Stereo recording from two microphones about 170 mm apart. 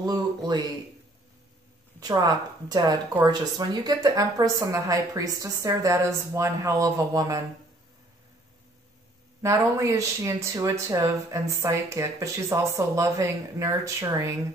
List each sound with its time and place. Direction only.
0.0 s speech: 25° right (ahead or behind)
2.0 s a woman's voice: 20° right (ahead or behind)
9.4 s speech: 15° right (ahead or behind)